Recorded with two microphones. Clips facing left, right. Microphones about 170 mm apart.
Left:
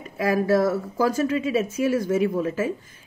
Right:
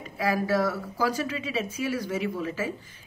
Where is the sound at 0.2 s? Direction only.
50° left (ahead or behind).